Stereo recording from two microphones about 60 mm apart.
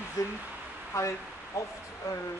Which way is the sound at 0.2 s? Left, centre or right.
Left.